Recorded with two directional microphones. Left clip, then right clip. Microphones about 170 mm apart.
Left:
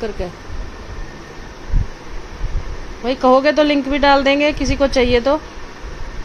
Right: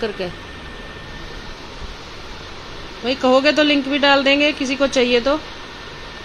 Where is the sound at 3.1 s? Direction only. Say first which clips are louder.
Left 2 dB; 10° left (ahead or behind).